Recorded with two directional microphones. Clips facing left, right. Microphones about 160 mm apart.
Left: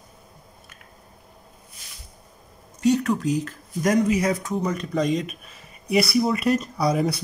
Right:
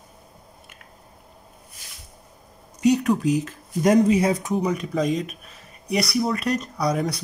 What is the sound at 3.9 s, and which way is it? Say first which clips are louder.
Speech: right 2 dB; 30° right (ahead or behind).